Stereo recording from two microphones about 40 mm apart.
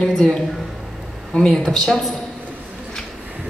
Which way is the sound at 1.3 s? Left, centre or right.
Centre.